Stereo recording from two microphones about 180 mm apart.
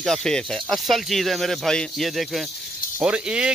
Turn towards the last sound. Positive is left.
turn(degrees=-5)  # may be behind; listen again after turning